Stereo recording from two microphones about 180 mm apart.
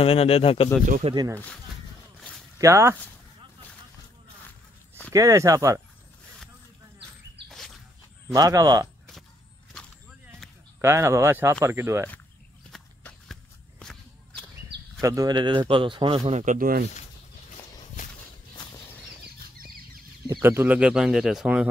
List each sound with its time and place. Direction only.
0.0 s speech: 35° left (ahead or behind)
1.0 s a man's voice: 25° right (ahead or behind)
2.6 s speech: 15° right (ahead or behind)
5.1 s a man's voice: 20° right (ahead or behind)
7.4 s dog: centre (ahead or behind)
8.3 s a man's voice: 20° right (ahead or behind)
10.4 s a sound: centre (ahead or behind)
10.8 s speech: 15° right (ahead or behind)
12.7 s walk: 5° left (ahead or behind)
15.0 s a man's voice: 20° right (ahead or behind); by 16.8 s 50° right (ahead or behind)
20.2 s speech: 15° right (ahead or behind)